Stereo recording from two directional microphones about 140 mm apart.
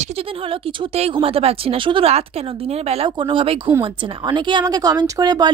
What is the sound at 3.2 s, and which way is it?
A woman's voice, 35° right (ahead or behind).